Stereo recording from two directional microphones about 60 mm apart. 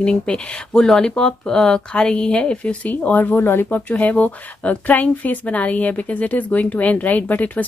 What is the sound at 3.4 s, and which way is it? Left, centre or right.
Speech, left.